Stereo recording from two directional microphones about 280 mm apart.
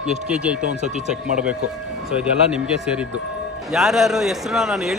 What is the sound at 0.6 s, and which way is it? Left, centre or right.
Speech, right.